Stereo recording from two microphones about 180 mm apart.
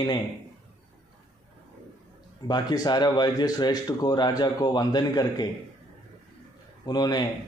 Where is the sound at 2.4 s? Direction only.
25° left (ahead or behind).